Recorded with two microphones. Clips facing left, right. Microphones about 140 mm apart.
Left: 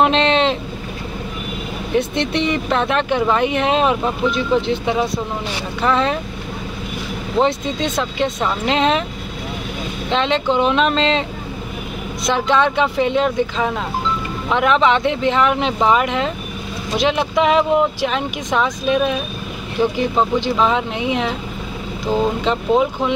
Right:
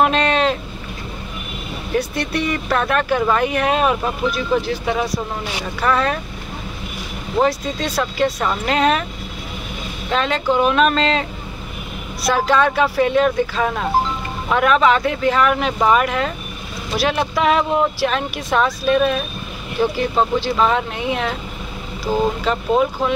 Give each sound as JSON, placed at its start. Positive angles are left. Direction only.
{"t": 0.0, "sound": "vehicle", "side_deg": 25}
{"t": 2.0, "sound": "speech", "side_deg": 20}
{"t": 7.3, "sound": "speech", "side_deg": 20}
{"t": 10.1, "sound": "speech", "side_deg": 20}